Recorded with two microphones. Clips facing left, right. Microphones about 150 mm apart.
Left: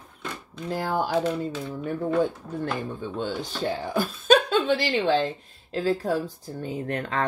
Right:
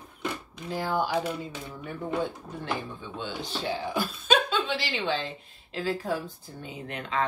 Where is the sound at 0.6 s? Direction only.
45° left (ahead or behind).